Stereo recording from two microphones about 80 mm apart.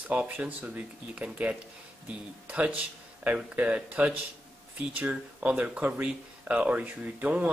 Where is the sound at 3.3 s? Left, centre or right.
Centre.